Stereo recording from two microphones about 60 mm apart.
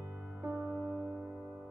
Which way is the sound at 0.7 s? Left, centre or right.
Left.